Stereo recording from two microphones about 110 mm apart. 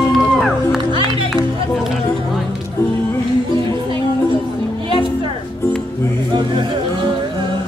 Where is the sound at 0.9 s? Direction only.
45° right (ahead or behind).